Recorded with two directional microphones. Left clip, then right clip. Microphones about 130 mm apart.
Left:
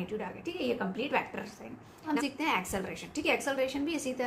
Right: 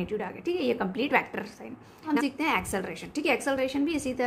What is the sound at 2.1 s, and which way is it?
A woman's voice, 35° right (ahead or behind).